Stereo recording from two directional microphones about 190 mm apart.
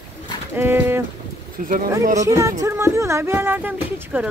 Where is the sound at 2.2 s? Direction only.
15° right (ahead or behind).